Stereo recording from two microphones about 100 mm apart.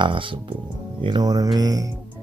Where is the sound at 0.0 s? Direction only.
55° right (ahead or behind).